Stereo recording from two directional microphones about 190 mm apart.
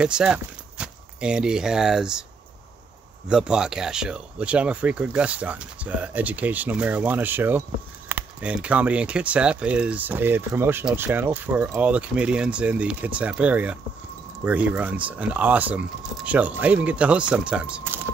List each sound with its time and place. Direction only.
0.0 s speech: 5° right (ahead or behind)
3.3 s speech: 5° right (ahead or behind)